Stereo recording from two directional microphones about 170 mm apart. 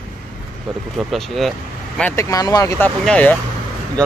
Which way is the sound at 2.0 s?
15° left (ahead or behind).